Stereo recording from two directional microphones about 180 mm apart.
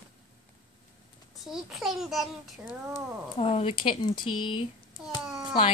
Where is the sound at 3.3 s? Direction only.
30° left (ahead or behind).